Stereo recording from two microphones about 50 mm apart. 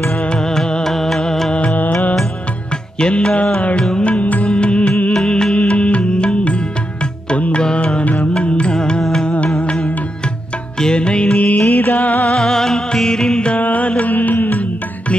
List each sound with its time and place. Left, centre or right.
0.2 s music: centre
1.5 s music: left
3.0 s music: centre
9.6 s music: left
12.4 s music: centre
13.6 s music: left